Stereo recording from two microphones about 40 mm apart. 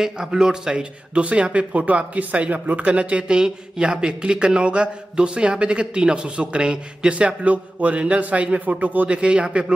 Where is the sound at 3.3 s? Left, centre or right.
Centre.